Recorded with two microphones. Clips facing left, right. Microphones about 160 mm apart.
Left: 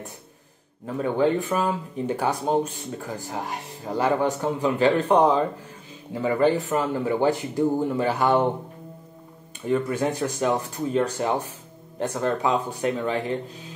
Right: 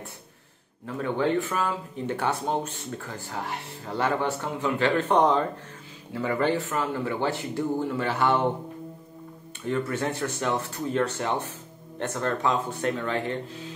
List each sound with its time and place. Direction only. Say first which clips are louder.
0.8 s speech: left 4 dB; 15° left (ahead or behind)
9.7 s speech: left 4 dB; 15° left (ahead or behind)